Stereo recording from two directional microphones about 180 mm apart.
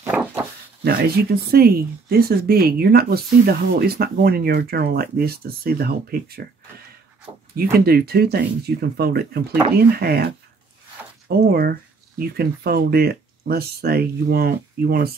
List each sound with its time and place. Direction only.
0.0 s a sound: 10° right (ahead or behind)
0.8 s speech: 60° right (ahead or behind)
7.5 s speech: 60° right (ahead or behind)